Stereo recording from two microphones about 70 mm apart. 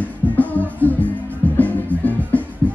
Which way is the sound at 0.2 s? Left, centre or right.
Left.